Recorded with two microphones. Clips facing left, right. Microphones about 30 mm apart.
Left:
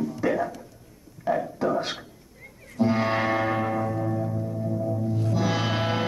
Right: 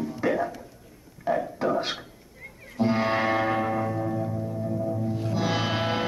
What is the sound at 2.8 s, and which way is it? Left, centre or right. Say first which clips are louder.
Music: even; centre.